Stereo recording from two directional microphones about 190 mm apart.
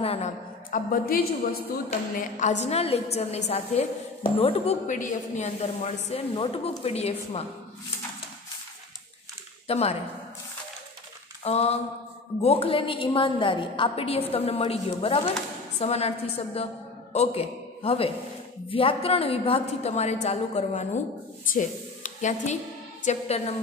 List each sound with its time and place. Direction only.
0.0 s a sound: 30° left (ahead or behind)
0.7 s a woman's voice: 50° left (ahead or behind)
9.7 s speech: 30° left (ahead or behind)
11.4 s a woman's voice: 35° left (ahead or behind)